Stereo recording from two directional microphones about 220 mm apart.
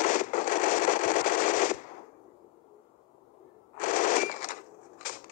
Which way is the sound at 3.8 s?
35° left (ahead or behind).